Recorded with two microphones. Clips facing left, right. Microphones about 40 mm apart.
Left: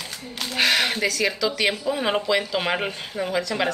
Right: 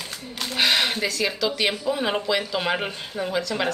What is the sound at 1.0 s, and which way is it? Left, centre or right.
Speech, centre.